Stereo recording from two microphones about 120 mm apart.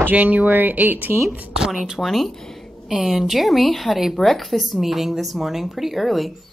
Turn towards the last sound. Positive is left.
turn(degrees=0)  # may be behind; listen again after turning